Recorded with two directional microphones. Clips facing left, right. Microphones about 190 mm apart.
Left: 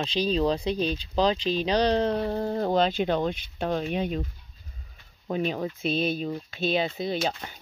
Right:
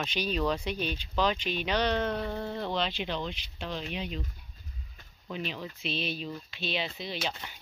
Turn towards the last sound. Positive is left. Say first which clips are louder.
# left 8 dB
turn(degrees=45)  # may be behind; listen again after turning